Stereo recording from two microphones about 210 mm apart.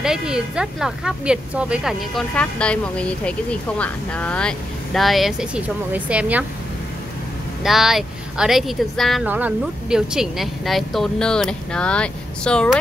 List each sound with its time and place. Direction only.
0.0 s speech: 5° right (ahead or behind)
7.6 s speech: centre (ahead or behind)